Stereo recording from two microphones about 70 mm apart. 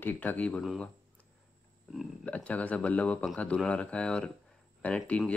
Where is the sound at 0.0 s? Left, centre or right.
Left.